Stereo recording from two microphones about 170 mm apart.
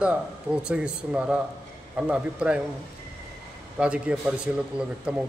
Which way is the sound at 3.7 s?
5° right (ahead or behind).